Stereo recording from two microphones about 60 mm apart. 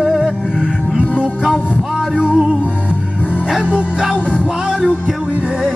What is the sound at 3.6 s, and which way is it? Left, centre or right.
Music, centre.